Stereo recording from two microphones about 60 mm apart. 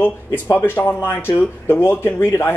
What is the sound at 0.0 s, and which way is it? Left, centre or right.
Speech, left.